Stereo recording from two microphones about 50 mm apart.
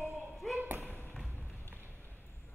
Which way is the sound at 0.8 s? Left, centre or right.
Left.